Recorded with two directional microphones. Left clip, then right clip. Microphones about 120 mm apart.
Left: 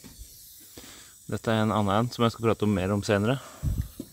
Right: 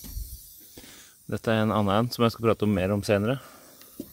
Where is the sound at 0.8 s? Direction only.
Centre (ahead or behind).